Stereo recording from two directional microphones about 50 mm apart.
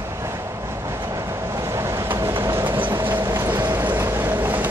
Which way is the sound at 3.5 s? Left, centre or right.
Right.